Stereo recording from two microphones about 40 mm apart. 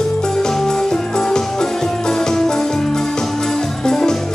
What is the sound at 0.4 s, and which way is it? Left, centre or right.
Music, centre.